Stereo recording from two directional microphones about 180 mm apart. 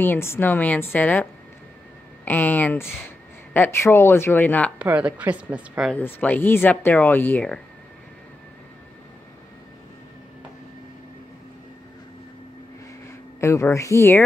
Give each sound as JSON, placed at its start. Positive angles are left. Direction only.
{"t": 0.0, "sound": "speech", "side_deg": 15}
{"t": 4.7, "sound": "speech", "side_deg": -5}
{"t": 5.9, "sound": "speech", "side_deg": 10}
{"t": 13.4, "sound": "speech", "side_deg": 15}